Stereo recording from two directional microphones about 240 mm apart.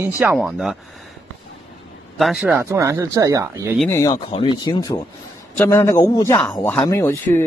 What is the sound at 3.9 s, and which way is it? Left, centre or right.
A man's voice, centre.